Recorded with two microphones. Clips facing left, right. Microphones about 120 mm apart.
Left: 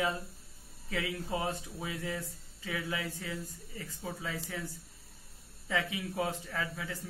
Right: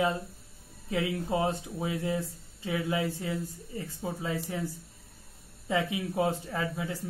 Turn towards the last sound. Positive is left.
turn(degrees=-20)  # may be behind; listen again after turning